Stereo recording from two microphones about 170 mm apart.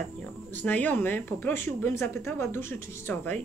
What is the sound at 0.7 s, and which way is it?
Speech, 10° left (ahead or behind).